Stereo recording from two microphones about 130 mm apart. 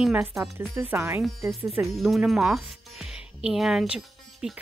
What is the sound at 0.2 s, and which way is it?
Speech, 20° right (ahead or behind).